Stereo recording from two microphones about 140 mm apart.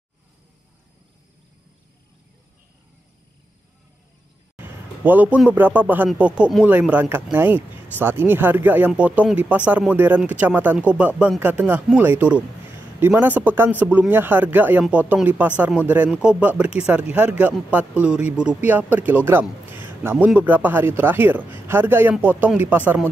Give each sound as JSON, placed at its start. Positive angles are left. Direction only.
{"t": 4.6, "sound": "a man's voice", "side_deg": -15}
{"t": 19.7, "sound": "a sound", "side_deg": -15}
{"t": 20.2, "sound": "speech", "side_deg": -10}